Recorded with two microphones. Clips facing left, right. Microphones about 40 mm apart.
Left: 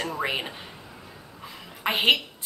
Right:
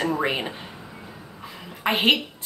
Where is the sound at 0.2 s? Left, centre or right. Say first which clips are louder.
Right 3 dB; centre.